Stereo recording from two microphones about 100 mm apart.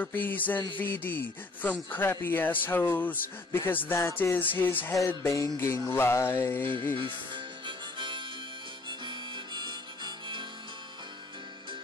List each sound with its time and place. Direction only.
0.0 s a sound: 20° left (ahead or behind)
0.7 s speech: 20° left (ahead or behind)
5.0 s music: 30° left (ahead or behind)
5.9 s speech: 25° left (ahead or behind)
7.0 s music: 55° right (ahead or behind)
8.8 s harmonica: 50° right (ahead or behind)